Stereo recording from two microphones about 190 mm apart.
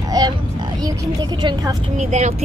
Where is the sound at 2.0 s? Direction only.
40° right (ahead or behind).